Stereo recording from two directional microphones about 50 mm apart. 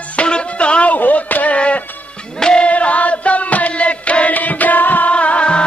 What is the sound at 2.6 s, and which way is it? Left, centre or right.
Music, left.